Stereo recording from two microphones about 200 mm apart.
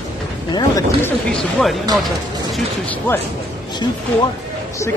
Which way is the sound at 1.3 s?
5° left (ahead or behind).